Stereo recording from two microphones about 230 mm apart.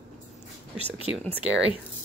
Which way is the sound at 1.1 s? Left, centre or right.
Centre.